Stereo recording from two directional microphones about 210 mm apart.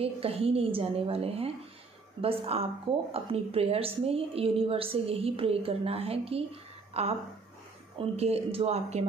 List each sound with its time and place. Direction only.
0.0 s a woman's voice: 30° right (ahead or behind)
8.2 s a woman's voice: 30° right (ahead or behind)